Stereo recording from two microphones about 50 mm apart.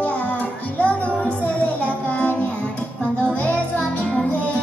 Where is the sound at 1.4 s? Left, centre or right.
Left.